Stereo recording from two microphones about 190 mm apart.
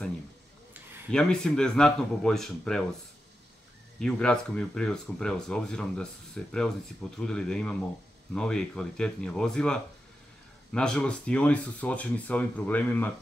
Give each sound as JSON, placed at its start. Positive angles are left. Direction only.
{"t": 1.1, "sound": "speech", "side_deg": 5}
{"t": 4.0, "sound": "speech", "side_deg": 5}